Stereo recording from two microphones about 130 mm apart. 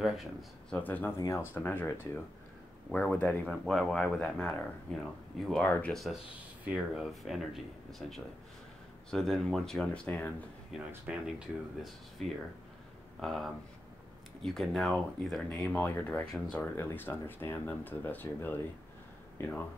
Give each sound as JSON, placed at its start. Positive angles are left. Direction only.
{"t": 0.0, "sound": "speech", "side_deg": -5}
{"t": 0.8, "sound": "speech", "side_deg": 15}
{"t": 6.6, "sound": "speech", "side_deg": -10}
{"t": 11.1, "sound": "speech", "side_deg": -5}